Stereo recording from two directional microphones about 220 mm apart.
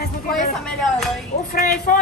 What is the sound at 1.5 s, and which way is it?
Speech, 40° left (ahead or behind).